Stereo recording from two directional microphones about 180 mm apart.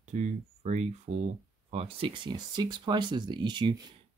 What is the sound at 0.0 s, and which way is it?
Speech, 40° right (ahead or behind).